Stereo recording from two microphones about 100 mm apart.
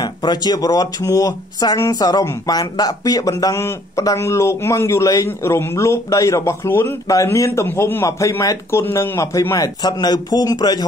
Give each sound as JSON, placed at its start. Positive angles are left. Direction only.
{"t": 0.0, "sound": "speech", "side_deg": 45}
{"t": 9.8, "sound": "a man's voice", "side_deg": 40}